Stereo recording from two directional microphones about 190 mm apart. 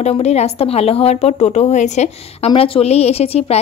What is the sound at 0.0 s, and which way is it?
A woman's voice, 35° left (ahead or behind).